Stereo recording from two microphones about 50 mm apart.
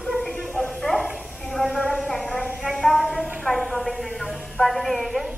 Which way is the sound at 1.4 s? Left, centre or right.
Centre.